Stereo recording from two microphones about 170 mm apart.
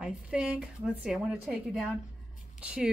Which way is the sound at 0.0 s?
5° right (ahead or behind).